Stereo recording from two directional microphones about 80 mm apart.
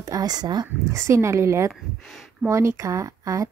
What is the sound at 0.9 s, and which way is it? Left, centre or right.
A woman's voice, right.